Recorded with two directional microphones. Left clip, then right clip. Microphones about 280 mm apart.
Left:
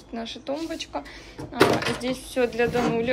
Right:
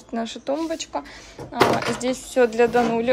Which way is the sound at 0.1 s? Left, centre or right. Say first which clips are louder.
Right 5 dB; centre.